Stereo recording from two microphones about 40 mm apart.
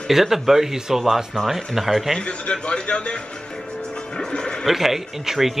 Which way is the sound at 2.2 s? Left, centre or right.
Left.